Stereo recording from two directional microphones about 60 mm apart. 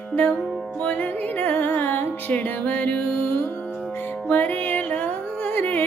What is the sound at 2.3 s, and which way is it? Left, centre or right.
Music, left.